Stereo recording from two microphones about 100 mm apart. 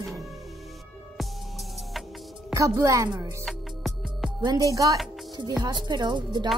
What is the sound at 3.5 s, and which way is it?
Music, centre (ahead or behind).